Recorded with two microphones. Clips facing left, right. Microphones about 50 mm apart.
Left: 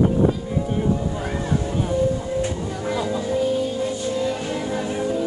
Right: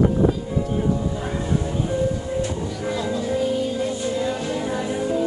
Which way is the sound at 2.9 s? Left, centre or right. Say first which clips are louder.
Left 2 dB; centre.